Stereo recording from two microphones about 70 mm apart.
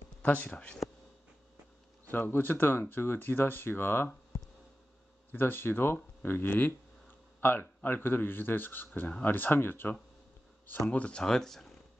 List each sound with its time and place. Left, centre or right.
0.2 s speech: left
2.0 s speech: left
10.9 s speech: centre